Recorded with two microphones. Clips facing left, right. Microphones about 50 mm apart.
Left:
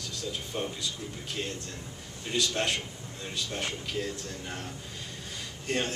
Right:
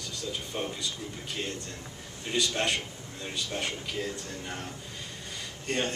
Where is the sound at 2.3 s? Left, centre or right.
Centre.